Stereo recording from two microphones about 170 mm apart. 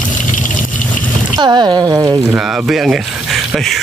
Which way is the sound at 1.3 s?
25° right (ahead or behind).